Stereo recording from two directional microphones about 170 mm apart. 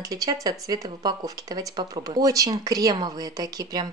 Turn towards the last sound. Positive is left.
turn(degrees=-20)  # may be behind; listen again after turning